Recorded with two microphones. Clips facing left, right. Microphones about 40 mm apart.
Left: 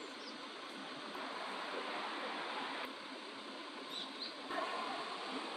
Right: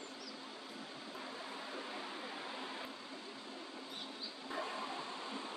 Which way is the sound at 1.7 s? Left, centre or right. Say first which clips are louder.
Left 3 dB; left.